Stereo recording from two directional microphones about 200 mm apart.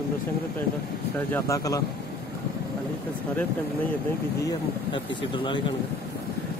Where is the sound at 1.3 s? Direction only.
15° left (ahead or behind).